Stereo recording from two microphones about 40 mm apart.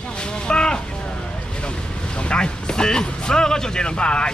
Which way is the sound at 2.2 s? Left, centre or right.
Left.